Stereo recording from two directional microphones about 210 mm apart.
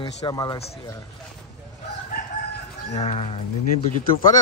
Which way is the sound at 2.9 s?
30° left (ahead or behind).